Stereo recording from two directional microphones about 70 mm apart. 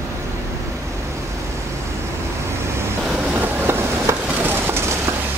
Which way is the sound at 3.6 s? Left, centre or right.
Right.